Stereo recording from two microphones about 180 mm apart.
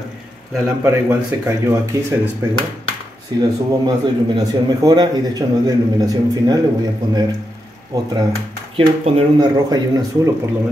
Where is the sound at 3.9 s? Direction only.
20° right (ahead or behind).